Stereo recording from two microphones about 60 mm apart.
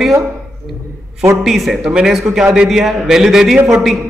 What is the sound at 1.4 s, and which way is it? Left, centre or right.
A man's voice, centre.